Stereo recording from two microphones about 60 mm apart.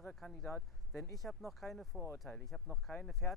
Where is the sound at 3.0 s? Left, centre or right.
Centre.